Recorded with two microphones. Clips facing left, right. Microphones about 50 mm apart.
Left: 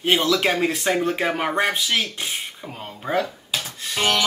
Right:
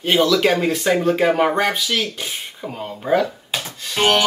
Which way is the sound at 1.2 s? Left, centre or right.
Centre.